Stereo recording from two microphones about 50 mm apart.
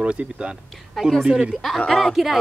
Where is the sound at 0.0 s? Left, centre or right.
Right.